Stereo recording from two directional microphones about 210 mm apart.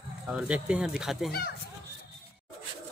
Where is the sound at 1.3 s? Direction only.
45° left (ahead or behind).